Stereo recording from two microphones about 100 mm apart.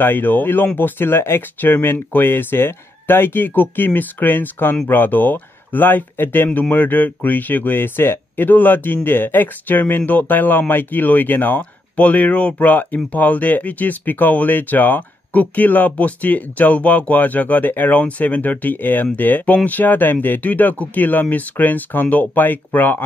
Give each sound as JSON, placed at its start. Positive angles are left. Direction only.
{"t": 0.0, "sound": "speech", "side_deg": 20}